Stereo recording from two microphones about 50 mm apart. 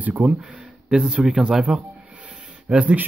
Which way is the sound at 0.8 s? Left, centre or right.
Centre.